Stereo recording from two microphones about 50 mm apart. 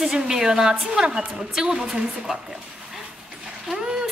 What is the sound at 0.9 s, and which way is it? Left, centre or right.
Speech, centre.